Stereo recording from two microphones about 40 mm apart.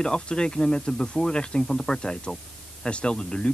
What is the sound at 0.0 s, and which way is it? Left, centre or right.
Speech, left.